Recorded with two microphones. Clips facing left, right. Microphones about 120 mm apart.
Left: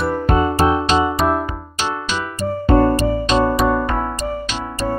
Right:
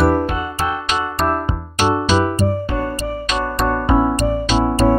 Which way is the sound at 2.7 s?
45° left (ahead or behind).